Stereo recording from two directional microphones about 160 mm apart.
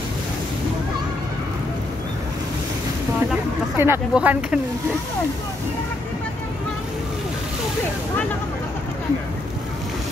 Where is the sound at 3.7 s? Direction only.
15° right (ahead or behind).